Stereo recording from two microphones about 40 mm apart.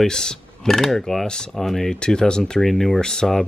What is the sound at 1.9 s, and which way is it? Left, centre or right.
Speech, left.